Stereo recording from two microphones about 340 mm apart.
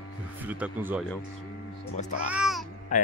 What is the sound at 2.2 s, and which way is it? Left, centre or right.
Speech, centre.